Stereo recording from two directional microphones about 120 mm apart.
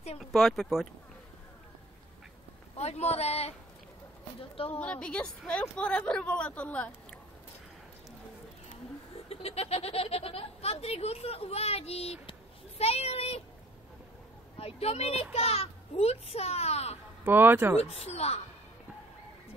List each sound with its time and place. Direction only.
0.2 s speech: centre (ahead or behind)
2.8 s speech: 60° left (ahead or behind)
4.7 s a woman's voice: 10° left (ahead or behind)
9.3 s speech: 55° left (ahead or behind)
14.6 s speech: 55° left (ahead or behind)
17.2 s speech: 15° right (ahead or behind)
17.7 s speech: 60° left (ahead or behind)